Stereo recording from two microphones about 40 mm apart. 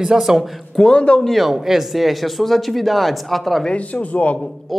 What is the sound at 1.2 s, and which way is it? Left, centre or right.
Speech, centre.